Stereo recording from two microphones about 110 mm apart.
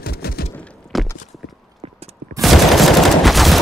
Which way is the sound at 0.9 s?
Centre (ahead or behind).